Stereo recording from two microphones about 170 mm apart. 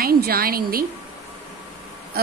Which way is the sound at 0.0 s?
60° right (ahead or behind).